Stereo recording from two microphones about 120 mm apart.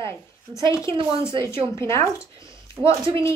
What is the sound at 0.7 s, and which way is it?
A woman's voice, 25° left (ahead or behind).